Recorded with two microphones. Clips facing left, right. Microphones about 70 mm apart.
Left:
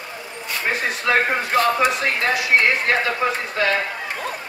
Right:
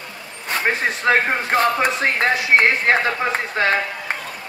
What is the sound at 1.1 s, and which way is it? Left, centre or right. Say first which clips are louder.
Speech: right 2 dB; right.